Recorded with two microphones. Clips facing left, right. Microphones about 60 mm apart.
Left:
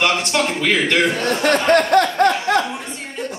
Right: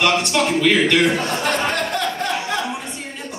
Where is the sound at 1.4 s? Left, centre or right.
Left.